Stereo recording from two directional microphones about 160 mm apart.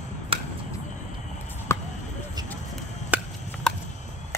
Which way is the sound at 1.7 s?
15° left (ahead or behind).